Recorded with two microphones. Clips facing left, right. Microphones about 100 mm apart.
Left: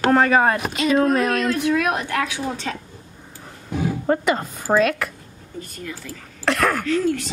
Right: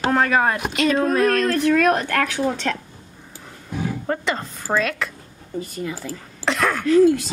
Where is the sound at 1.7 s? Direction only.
65° right (ahead or behind).